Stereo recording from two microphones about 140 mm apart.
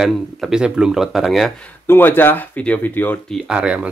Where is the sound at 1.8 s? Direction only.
15° left (ahead or behind).